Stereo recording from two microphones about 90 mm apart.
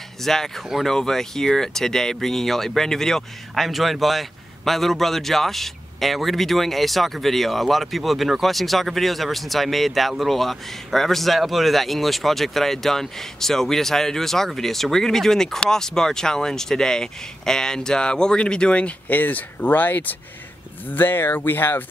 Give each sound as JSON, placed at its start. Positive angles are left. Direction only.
{"t": 0.2, "sound": "speech", "side_deg": 5}